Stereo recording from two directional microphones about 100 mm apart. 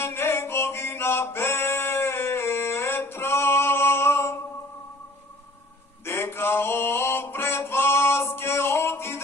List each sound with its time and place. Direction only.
0.0 s music: 25° left (ahead or behind)
6.0 s mantra: 25° left (ahead or behind)